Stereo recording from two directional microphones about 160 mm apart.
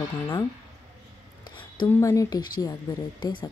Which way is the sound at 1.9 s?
20° left (ahead or behind).